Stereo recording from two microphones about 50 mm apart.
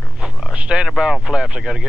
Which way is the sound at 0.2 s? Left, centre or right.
Centre.